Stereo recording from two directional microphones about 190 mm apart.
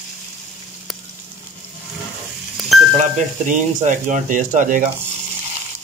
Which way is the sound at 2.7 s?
Centre (ahead or behind).